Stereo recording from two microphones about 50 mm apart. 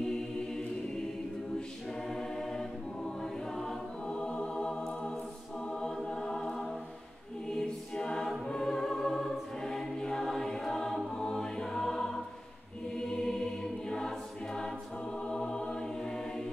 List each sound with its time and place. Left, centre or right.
0.0 s choir: centre
2.0 s choir: centre
6.0 s music: centre
7.4 s choir: centre
11.1 s music: centre
12.9 s choir: centre
15.1 s music: centre